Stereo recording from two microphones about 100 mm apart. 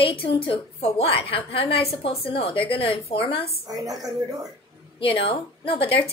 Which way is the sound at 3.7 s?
40° right (ahead or behind).